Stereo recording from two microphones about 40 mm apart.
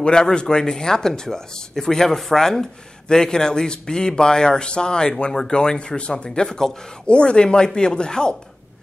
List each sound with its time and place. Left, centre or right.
0.0 s speech: centre
7.1 s speech: left